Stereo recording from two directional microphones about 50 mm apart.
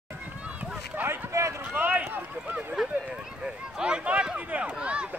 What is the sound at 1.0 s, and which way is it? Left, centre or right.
Speech, right.